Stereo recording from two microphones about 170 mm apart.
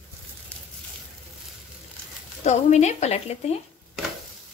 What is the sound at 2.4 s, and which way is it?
Speech, 40° left (ahead or behind).